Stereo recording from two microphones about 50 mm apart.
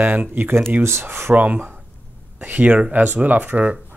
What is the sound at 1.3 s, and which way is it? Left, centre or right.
Speech, right.